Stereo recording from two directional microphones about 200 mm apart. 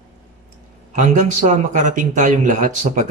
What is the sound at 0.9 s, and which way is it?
Speech, 40° right (ahead or behind).